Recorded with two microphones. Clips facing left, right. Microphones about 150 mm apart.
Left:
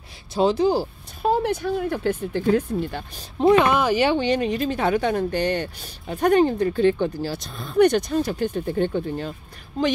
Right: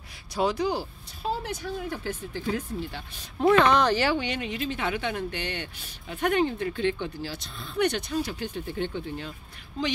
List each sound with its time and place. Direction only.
0.3 s speech: 25° left (ahead or behind)
1.2 s speech: 55° left (ahead or behind)
3.3 s speech: 15° left (ahead or behind)
4.2 s speech: 40° left (ahead or behind)